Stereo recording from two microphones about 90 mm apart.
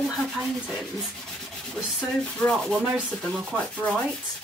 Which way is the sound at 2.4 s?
5° left (ahead or behind).